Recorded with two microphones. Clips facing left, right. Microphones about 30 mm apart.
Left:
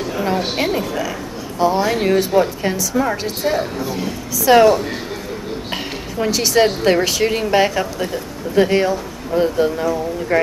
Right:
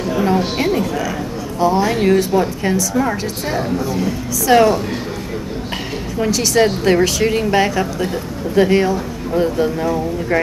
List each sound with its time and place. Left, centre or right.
0.1 s music: centre
0.6 s a woman's voice: centre
9.3 s a woman's voice: centre